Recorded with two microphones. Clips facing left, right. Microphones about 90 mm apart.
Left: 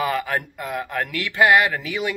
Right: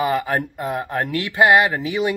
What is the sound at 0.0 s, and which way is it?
Speech, 25° right (ahead or behind).